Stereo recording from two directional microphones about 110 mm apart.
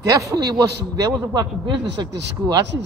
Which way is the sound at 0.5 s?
35° right (ahead or behind).